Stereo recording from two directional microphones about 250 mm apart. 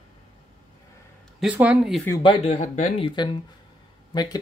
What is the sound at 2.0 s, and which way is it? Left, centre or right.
Speech, centre.